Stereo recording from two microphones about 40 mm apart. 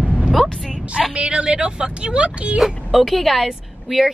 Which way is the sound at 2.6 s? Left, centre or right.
Centre.